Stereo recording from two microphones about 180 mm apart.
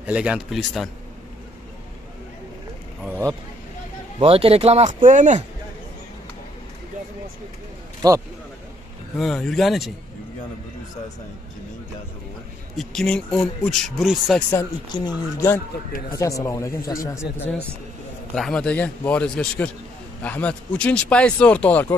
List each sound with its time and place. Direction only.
0.0 s speech: 5° right (ahead or behind)
3.0 s speech: 10° right (ahead or behind)
4.2 s speech: 30° right (ahead or behind)
8.0 s speech: 20° right (ahead or behind)
9.2 s speech: 5° left (ahead or behind)
12.7 s speech: centre (ahead or behind)
14.5 s speech: 20° left (ahead or behind)
16.2 s speech: 15° left (ahead or behind)
18.3 s speech: 5° left (ahead or behind)